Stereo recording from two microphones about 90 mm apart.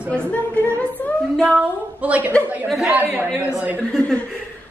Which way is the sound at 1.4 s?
15° right (ahead or behind).